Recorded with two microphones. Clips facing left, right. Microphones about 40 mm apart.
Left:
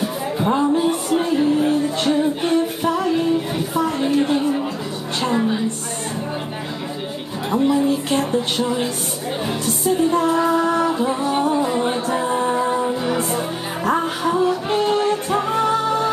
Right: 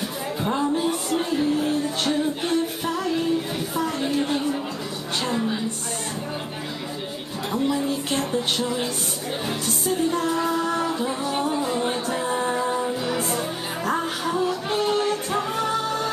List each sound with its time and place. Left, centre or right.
0.0 s music: centre
5.2 s a sound: centre
7.5 s speech: centre
9.8 s music: centre